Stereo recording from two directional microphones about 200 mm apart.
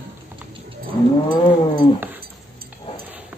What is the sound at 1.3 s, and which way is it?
Cat, 25° left (ahead or behind).